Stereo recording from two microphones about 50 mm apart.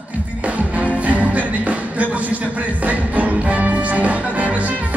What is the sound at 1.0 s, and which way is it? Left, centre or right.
Music, right.